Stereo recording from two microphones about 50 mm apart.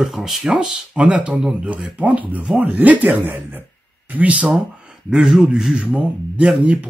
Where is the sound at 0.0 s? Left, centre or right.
Centre; by 4.6 s right.